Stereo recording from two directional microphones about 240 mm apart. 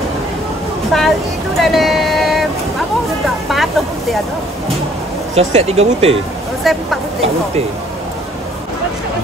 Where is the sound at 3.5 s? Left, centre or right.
Centre.